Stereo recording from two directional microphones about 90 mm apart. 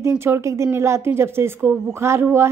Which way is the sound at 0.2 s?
25° right (ahead or behind).